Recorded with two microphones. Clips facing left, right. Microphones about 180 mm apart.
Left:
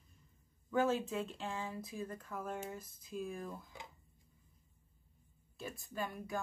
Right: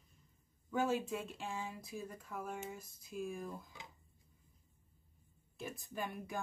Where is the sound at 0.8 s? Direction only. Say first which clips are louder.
Right 1 dB; 15° right (ahead or behind).